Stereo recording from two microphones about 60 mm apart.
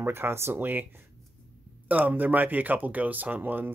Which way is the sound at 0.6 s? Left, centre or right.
Right.